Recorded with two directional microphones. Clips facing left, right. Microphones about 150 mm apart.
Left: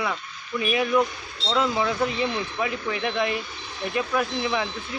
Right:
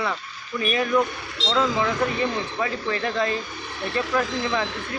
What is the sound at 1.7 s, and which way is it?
Speech, 90° right.